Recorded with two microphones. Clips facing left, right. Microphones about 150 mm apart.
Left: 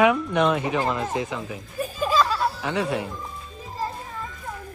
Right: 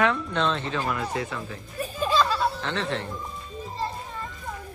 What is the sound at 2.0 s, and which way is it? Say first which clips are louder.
Music: left 1 dB; 5° left (ahead or behind).